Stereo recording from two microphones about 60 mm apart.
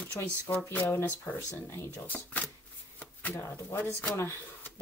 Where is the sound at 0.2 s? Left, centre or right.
Left.